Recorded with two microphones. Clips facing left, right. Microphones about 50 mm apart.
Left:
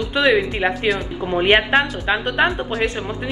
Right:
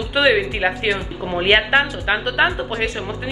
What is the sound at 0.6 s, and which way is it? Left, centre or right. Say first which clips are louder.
A woman's voice: even; centre.